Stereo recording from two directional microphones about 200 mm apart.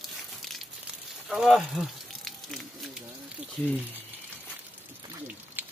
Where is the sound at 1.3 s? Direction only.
Centre (ahead or behind).